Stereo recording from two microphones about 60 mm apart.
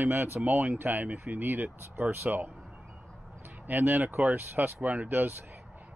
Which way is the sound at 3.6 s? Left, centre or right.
Right.